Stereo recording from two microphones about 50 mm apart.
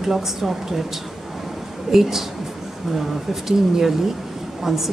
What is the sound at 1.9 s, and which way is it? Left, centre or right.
A woman's voice, centre.